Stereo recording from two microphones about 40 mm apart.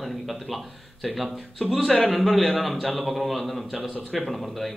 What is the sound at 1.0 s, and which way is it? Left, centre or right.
A man's voice, centre.